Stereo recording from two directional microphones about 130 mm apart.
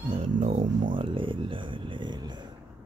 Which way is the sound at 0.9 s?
40° right (ahead or behind).